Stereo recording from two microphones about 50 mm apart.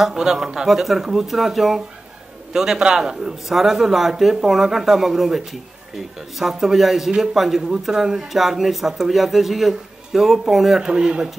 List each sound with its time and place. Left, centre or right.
0.0 s speech: centre
10.9 s speech: centre